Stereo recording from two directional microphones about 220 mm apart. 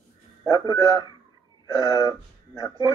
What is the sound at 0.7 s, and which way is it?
Speech, 20° left (ahead or behind).